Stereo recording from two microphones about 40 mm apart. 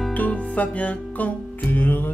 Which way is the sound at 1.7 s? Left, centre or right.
Left.